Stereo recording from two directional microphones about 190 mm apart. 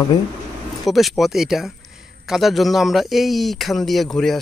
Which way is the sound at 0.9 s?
Centre (ahead or behind).